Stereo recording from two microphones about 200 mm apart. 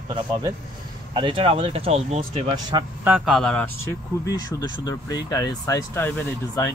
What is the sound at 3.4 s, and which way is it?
Speech, 5° left (ahead or behind).